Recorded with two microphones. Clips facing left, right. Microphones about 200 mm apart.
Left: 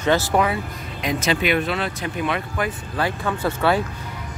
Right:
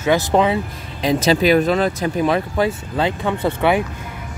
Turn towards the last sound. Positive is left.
turn(degrees=-15)  # may be behind; listen again after turning